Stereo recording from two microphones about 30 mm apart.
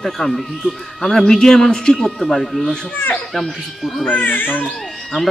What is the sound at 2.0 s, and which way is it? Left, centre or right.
Speech, centre.